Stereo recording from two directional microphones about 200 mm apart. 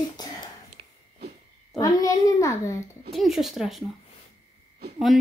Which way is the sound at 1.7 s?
15° left (ahead or behind).